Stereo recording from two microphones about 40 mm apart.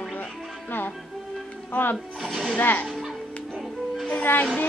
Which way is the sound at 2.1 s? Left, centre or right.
Centre.